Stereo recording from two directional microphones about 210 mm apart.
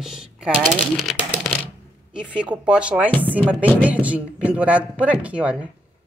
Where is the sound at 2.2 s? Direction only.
5° right (ahead or behind).